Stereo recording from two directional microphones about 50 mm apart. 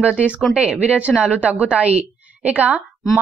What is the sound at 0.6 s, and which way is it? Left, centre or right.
A woman's voice, right.